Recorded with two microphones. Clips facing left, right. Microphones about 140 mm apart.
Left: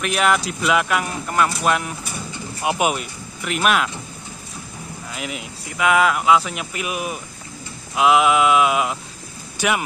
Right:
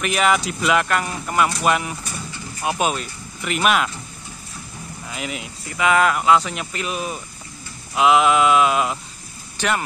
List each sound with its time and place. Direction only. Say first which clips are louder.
0.0 s speech: even; centre (ahead or behind)
2.3 s bird: left 1 dB; 20° left (ahead or behind)
3.4 s speech: even; centre (ahead or behind)
5.1 s speech: right 1 dB; centre (ahead or behind)
7.9 s speech: even; centre (ahead or behind)